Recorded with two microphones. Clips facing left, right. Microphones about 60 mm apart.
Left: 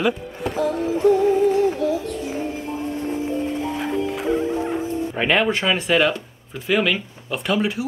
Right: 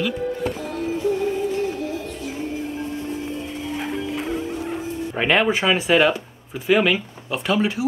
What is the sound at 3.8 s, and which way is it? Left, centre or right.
Music, centre.